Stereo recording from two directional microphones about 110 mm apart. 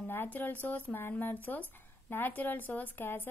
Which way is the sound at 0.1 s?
20° left (ahead or behind).